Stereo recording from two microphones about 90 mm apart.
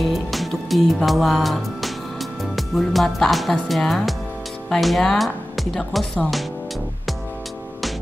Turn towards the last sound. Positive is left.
turn(degrees=0)  # may be behind; listen again after turning